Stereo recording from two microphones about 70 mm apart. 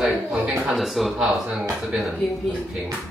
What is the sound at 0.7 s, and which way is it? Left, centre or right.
Speech, centre.